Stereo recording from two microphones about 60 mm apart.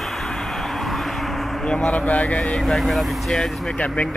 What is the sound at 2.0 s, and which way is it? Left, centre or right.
Speech, centre.